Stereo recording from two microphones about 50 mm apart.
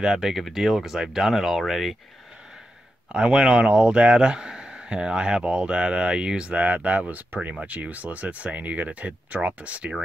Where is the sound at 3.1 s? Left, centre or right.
Centre.